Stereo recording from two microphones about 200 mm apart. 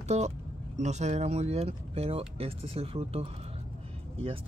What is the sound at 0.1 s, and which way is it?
Speech, 35° right (ahead or behind).